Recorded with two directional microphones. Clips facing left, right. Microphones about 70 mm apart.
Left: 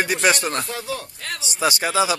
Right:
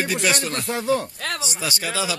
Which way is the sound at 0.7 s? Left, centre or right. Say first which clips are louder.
Right 7 dB; right.